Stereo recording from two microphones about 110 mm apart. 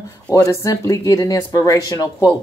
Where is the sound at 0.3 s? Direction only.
35° left (ahead or behind).